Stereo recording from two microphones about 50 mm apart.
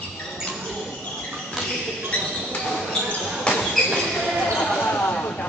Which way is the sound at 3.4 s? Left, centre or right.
Centre.